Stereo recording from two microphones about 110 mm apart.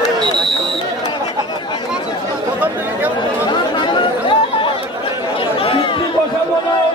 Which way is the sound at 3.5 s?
45° left (ahead or behind).